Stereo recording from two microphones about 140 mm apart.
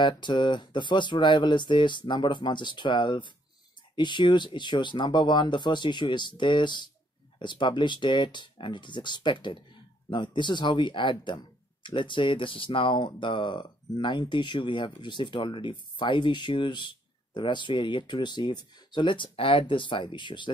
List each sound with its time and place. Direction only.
0.0 s speech: 35° left (ahead or behind)